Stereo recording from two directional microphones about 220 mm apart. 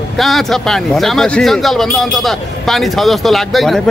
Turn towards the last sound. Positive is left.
turn(degrees=0)  # may be behind; listen again after turning